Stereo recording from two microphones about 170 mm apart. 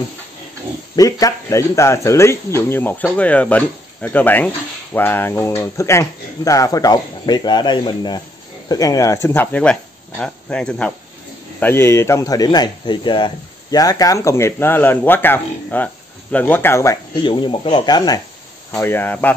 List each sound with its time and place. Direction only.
0.9 s speech: 20° left (ahead or behind)
18.8 s speech: 15° left (ahead or behind)